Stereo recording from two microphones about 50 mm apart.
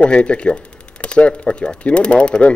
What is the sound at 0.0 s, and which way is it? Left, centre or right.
Speech, left.